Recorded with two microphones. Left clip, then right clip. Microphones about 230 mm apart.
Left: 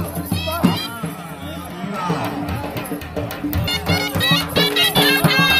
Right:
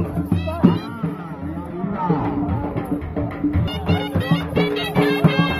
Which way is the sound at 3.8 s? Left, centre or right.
Left.